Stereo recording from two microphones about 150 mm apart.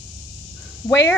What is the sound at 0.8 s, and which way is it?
Speech, 20° left (ahead or behind).